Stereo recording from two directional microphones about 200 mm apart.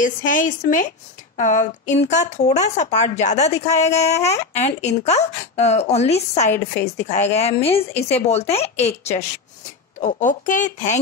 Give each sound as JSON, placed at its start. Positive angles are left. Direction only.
{"t": 0.0, "sound": "speech", "side_deg": 40}